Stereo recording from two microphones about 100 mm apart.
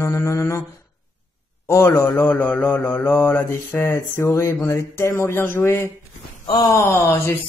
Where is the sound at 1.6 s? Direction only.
30° left (ahead or behind).